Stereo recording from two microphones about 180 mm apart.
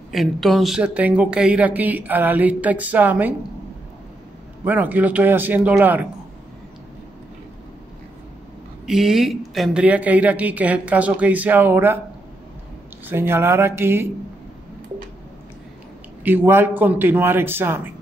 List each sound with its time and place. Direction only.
0.1 s speech: centre (ahead or behind)
4.6 s speech: 10° right (ahead or behind)
8.8 s speech: centre (ahead or behind)
13.0 s speech: 10° right (ahead or behind)
16.3 s speech: 10° right (ahead or behind)